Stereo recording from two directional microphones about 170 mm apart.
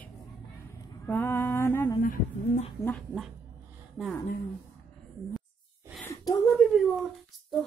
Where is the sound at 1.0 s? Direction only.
10° left (ahead or behind).